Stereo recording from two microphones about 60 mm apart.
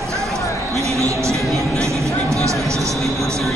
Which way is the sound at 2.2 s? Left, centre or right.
Right.